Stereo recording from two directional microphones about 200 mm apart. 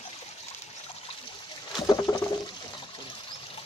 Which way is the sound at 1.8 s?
20° left (ahead or behind).